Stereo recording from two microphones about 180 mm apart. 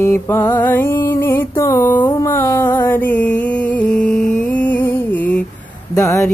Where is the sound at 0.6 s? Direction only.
10° left (ahead or behind).